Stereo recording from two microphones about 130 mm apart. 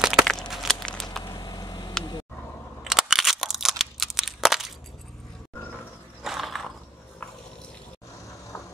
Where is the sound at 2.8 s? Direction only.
5° right (ahead or behind).